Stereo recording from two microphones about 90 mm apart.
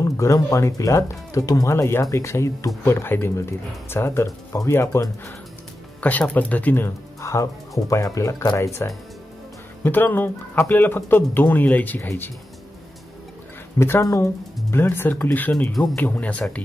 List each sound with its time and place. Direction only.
0.0 s speech: 35° left (ahead or behind)
5.9 s speech: 15° left (ahead or behind); by 8.9 s 35° left (ahead or behind)
9.8 s speech: 20° left (ahead or behind)
13.7 s speech: 30° left (ahead or behind)
15.7 s speech: centre (ahead or behind)
16.0 s speech: 15° left (ahead or behind)